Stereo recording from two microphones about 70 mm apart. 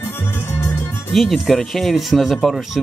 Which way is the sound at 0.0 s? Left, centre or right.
Left.